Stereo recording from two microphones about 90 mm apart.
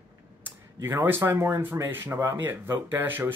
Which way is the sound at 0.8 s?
25° right (ahead or behind).